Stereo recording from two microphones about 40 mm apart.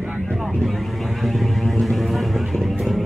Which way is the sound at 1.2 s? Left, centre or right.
Centre.